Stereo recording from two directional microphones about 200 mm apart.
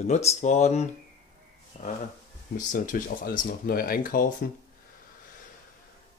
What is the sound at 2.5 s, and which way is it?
Speech, 40° left (ahead or behind).